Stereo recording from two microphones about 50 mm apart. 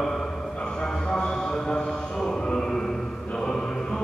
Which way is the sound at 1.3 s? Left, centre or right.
Centre.